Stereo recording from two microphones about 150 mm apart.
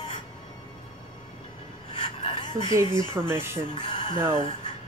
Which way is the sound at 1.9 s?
35° left (ahead or behind).